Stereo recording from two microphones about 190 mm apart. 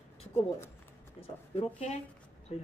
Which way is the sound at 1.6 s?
35° left (ahead or behind).